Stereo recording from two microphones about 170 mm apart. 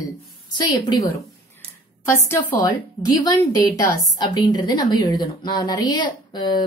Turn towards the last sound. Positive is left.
turn(degrees=25)  # may be behind; listen again after turning